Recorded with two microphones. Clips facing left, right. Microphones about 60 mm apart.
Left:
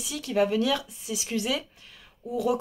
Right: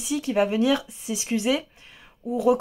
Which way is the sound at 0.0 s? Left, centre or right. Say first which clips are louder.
Right 3 dB; right.